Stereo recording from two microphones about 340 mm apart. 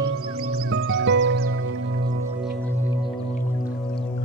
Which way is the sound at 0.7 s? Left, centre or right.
Right.